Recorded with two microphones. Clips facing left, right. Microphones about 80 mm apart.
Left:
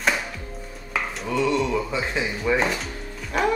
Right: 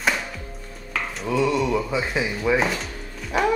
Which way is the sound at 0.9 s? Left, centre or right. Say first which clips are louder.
Right 1 dB; centre.